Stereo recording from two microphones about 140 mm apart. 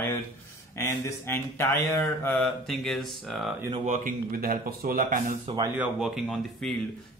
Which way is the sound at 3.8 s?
65° right (ahead or behind).